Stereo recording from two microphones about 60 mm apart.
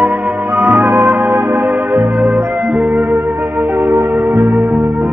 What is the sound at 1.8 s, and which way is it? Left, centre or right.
Music, right.